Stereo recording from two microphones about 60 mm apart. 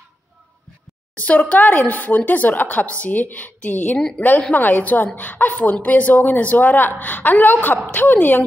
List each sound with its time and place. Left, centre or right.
1.1 s a woman's voice: left